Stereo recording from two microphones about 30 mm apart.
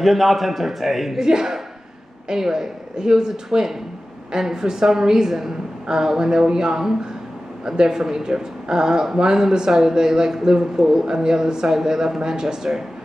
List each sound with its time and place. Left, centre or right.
0.0 s a man's voice: centre
1.2 s a woman's voice: centre
10.8 s a man's voice: centre